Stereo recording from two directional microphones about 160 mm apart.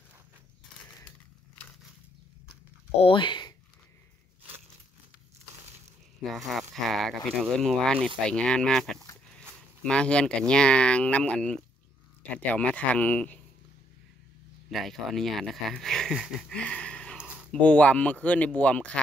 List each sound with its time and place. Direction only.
3.0 s speech: 30° left (ahead or behind)
6.2 s speech: centre (ahead or behind)
14.7 s speech: centre (ahead or behind)